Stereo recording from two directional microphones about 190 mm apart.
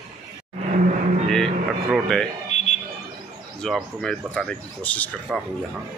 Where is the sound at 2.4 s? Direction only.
35° left (ahead or behind).